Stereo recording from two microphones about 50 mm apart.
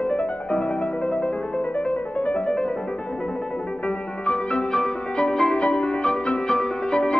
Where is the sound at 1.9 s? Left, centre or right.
Left.